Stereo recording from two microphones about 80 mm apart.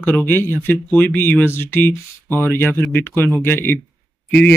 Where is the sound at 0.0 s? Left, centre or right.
Left.